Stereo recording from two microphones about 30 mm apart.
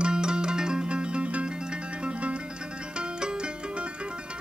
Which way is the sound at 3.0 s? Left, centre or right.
Right.